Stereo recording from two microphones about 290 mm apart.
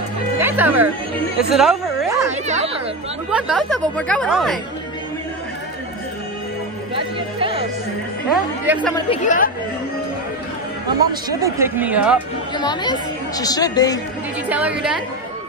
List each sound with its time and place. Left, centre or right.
0.4 s music: centre
1.5 s a sound: centre
2.4 s chatter: right
3.3 s speech: centre
7.0 s music: centre
8.3 s speech: centre
10.9 s speech: centre
12.5 s speech: centre
14.5 s speech: centre